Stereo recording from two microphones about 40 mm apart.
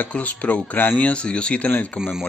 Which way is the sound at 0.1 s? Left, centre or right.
Left.